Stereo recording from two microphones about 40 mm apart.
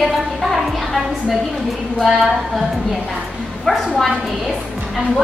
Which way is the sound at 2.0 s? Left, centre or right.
Centre.